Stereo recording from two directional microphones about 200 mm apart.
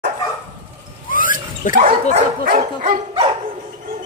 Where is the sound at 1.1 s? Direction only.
45° left (ahead or behind).